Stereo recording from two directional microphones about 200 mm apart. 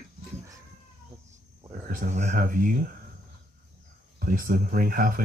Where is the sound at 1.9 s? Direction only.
40° right (ahead or behind).